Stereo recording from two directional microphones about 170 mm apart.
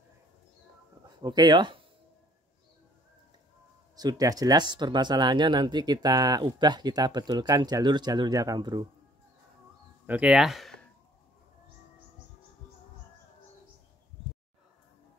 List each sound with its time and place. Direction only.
1.2 s speech: 25° right (ahead or behind)
3.9 s speech: 25° right (ahead or behind)
10.0 s speech: 10° right (ahead or behind)